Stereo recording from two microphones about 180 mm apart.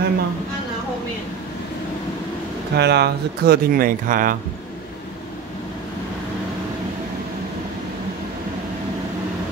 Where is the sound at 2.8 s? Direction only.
65° right (ahead or behind); by 4.4 s 50° right (ahead or behind).